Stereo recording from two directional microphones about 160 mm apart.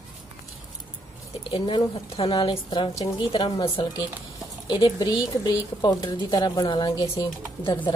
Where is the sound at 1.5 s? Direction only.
30° left (ahead or behind).